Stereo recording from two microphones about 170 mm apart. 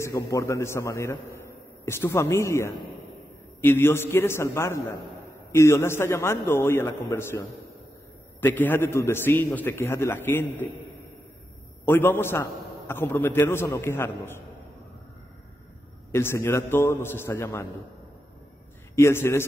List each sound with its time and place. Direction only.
0.0 s a man's voice: 15° left (ahead or behind)
11.8 s a man's voice: 10° left (ahead or behind)
16.1 s a man's voice: 15° left (ahead or behind)
18.9 s a man's voice: 15° left (ahead or behind)